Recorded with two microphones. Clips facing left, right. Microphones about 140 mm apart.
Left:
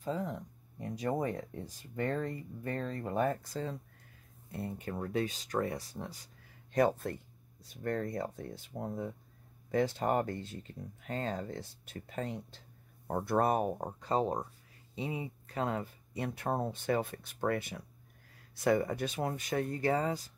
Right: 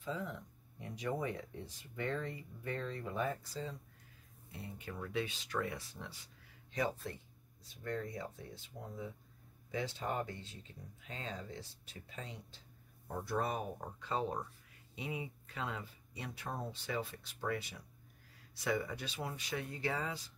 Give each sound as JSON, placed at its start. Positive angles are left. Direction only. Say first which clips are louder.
{"t": 0.0, "sound": "speech", "louder": "left 5 dB", "side_deg": 40}